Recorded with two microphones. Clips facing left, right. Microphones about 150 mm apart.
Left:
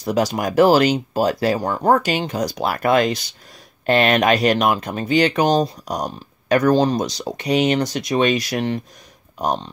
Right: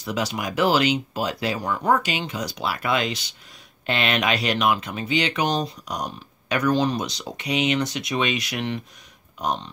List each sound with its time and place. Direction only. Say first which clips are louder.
0.0 s speech: left 7 dB; 40° left (ahead or behind)